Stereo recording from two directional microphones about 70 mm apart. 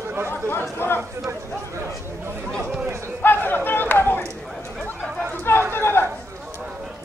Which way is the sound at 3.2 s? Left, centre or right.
Left.